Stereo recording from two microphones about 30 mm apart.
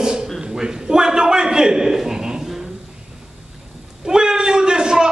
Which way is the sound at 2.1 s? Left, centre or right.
Right.